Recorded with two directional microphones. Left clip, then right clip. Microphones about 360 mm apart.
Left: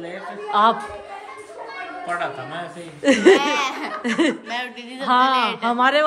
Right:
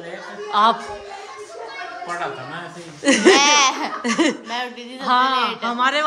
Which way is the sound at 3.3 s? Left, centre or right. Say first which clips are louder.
Right 3 dB; right.